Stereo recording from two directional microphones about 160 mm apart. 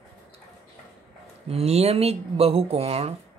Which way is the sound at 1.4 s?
40° right (ahead or behind).